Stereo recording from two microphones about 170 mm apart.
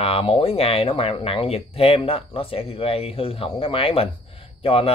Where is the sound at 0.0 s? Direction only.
35° left (ahead or behind).